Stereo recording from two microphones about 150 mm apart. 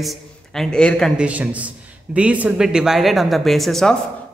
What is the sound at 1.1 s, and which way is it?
A man's voice, 10° right (ahead or behind).